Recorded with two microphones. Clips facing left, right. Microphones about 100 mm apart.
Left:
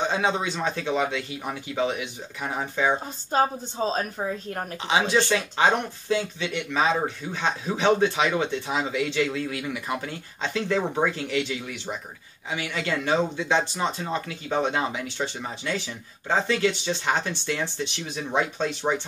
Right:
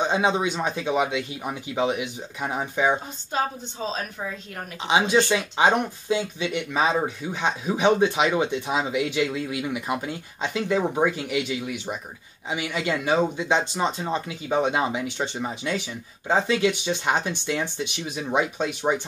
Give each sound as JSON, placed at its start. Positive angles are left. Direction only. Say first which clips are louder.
{"t": 0.0, "sound": "speech", "louder": "right 2 dB", "side_deg": -15}
{"t": 3.3, "sound": "a woman's voice", "louder": "left 4 dB", "side_deg": 40}
{"t": 4.8, "sound": "speech", "louder": "right 2 dB", "side_deg": -20}